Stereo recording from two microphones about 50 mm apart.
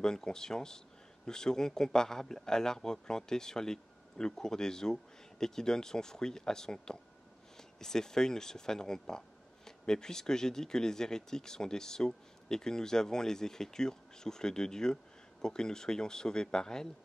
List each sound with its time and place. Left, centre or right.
0.0 s a man's voice: centre